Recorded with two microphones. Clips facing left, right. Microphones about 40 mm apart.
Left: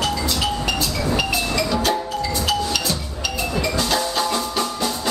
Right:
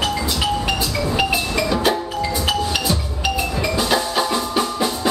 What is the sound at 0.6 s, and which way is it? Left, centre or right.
Music, right.